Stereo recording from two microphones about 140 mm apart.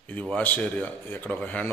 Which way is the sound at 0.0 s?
10° left (ahead or behind).